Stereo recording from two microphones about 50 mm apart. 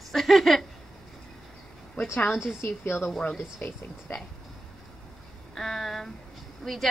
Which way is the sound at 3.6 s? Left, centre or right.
Left.